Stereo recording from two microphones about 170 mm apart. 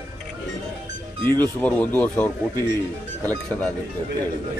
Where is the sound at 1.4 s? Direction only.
10° left (ahead or behind).